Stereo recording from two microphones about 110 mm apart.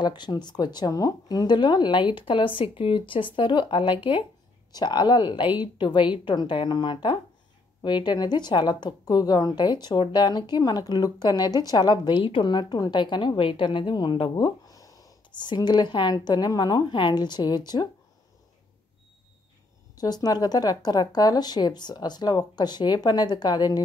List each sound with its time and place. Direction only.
0.0 s a woman's voice: 40° left (ahead or behind)
14.3 s speech: 35° left (ahead or behind)
20.0 s a woman's voice: 35° left (ahead or behind)